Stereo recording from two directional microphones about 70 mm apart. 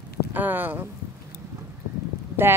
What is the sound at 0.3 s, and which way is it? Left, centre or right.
Speech, right.